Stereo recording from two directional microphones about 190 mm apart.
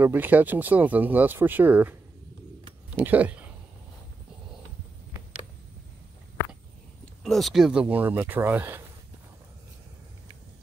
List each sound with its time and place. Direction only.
0.0 s speech: 10° right (ahead or behind)
3.0 s speech: 10° right (ahead or behind)
7.2 s speech: centre (ahead or behind)